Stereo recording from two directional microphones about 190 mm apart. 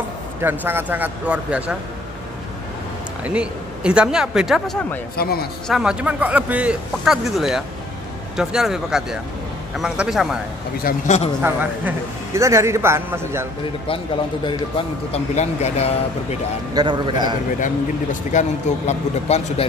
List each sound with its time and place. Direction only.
0.4 s speech: 10° right (ahead or behind)
3.3 s a man's voice: 5° right (ahead or behind)
5.1 s a man's voice: 55° left (ahead or behind)
5.7 s a man's voice: 5° right (ahead or behind)
10.8 s a man's voice: 50° left (ahead or behind)
11.4 s speech: 10° right (ahead or behind)
14.4 s speech: 30° left (ahead or behind)
16.7 s a man's voice: 25° right (ahead or behind)
18.3 s speech: 40° left (ahead or behind)